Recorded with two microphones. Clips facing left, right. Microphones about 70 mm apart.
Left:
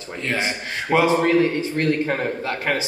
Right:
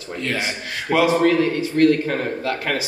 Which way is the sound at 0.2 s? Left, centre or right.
Left.